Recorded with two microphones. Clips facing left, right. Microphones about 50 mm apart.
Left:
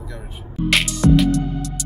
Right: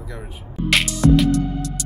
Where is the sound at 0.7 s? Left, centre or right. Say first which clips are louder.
Even; centre.